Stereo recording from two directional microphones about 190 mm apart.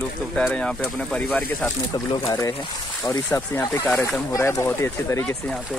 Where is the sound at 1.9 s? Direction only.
25° left (ahead or behind).